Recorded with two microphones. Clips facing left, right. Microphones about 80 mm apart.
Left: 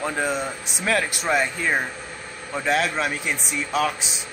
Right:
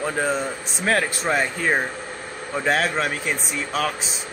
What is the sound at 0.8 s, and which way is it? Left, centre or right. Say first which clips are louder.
A man's voice: right 2 dB; right.